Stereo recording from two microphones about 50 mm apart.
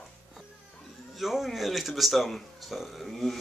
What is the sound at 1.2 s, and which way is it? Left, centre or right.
Speech, centre.